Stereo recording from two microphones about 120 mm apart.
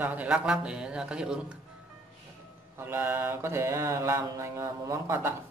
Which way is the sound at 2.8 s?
20° right (ahead or behind).